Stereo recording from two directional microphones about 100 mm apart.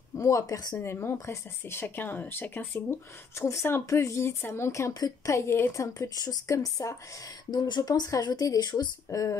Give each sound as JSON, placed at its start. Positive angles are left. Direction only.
{"t": 0.2, "sound": "a woman's voice", "side_deg": 30}
{"t": 0.8, "sound": "a woman's voice", "side_deg": 25}
{"t": 7.5, "sound": "a woman's voice", "side_deg": 45}